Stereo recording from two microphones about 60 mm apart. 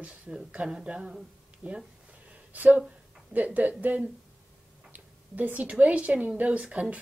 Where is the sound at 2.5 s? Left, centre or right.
Right.